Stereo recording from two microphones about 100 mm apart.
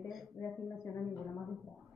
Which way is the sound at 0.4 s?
35° left (ahead or behind).